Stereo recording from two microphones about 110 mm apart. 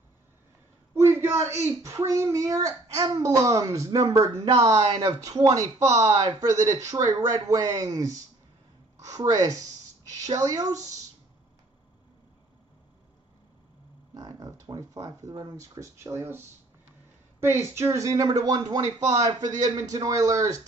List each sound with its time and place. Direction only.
0.9 s a woman's voice: 20° right (ahead or behind)
14.1 s speech: 35° right (ahead or behind)